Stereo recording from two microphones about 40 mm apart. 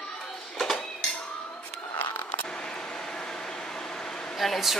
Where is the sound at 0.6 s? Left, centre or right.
Centre.